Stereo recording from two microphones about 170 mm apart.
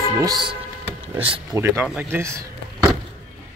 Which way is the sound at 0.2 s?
25° right (ahead or behind).